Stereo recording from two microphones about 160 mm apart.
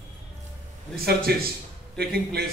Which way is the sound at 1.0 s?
80° right.